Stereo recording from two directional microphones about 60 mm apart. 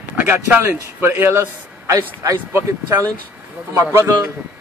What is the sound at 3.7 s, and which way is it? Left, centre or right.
Speech, right.